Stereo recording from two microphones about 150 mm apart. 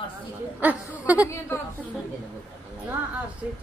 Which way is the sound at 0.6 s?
10° right (ahead or behind).